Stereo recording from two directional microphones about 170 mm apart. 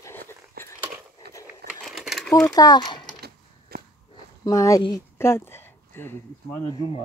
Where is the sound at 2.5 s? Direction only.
25° left (ahead or behind).